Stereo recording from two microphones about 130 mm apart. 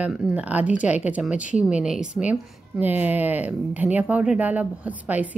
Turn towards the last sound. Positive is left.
turn(degrees=-10)  # may be behind; listen again after turning